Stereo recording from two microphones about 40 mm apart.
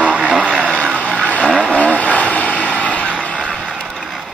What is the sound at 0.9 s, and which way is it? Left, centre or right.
Vehicle, left.